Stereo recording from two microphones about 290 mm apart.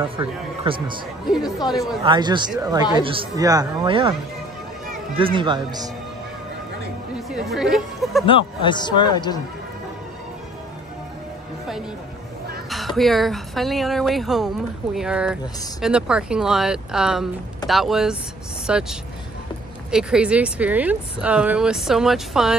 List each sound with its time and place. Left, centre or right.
0.2 s speech: centre
1.7 s speech: centre
2.0 s speech: centre
7.2 s speech: centre
8.3 s a man's voice: centre
12.6 s speech: centre